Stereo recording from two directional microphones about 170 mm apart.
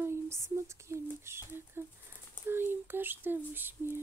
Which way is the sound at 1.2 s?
15° right (ahead or behind).